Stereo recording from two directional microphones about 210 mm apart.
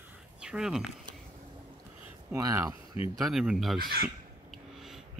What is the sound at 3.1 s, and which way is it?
Speech, centre (ahead or behind).